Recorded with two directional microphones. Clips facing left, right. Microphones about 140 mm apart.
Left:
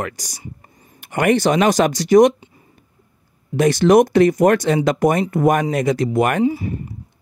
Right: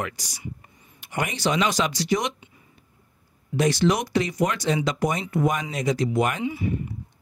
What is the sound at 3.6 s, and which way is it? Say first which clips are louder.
Speech: left 9 dB; 50° left (ahead or behind).